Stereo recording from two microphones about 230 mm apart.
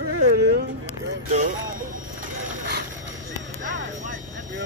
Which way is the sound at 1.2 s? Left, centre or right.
Right.